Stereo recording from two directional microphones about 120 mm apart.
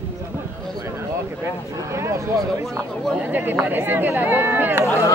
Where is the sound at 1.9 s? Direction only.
25° right (ahead or behind).